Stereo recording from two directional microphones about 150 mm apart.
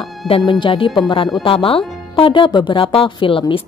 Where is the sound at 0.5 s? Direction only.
35° left (ahead or behind).